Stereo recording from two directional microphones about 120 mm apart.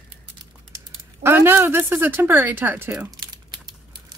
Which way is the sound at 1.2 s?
20° right (ahead or behind).